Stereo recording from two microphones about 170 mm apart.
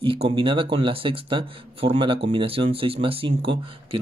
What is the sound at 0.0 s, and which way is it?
Speech, 30° right (ahead or behind).